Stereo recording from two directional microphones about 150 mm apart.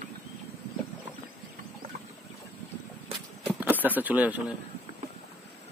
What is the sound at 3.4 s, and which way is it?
Speech, 10° right (ahead or behind).